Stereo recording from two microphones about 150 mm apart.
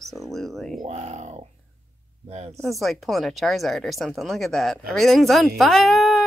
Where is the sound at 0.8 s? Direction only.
50° right (ahead or behind).